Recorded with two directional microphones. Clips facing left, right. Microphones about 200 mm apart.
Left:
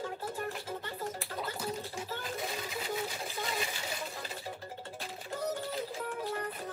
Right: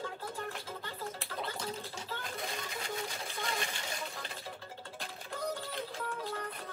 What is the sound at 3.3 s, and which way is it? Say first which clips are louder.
Water: left 2 dB; centre (ahead or behind).